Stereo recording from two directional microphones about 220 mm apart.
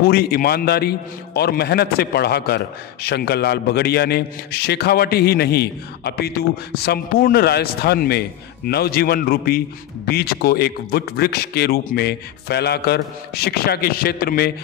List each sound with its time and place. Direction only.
0.0 s a man's voice: 45° left (ahead or behind)